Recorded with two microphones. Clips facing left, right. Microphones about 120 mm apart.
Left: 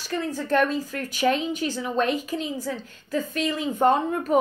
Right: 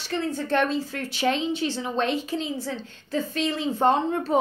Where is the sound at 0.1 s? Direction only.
30° right (ahead or behind).